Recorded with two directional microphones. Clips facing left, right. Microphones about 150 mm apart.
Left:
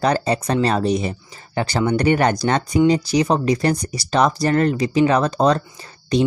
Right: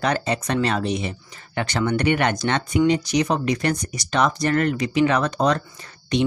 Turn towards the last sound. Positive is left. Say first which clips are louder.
# left 3 dB
turn(degrees=35)  # may be behind; listen again after turning